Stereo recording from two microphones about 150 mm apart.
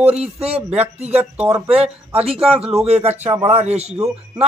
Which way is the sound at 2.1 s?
40° right (ahead or behind).